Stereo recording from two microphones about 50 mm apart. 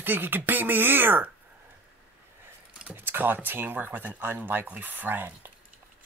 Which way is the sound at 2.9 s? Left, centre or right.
Right.